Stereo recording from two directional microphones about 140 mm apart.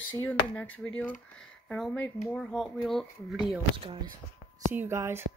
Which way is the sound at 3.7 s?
40° right (ahead or behind).